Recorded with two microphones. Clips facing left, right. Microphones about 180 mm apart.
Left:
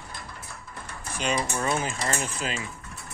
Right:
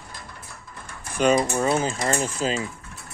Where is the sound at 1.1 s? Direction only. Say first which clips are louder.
Right 8 dB; 45° right (ahead or behind).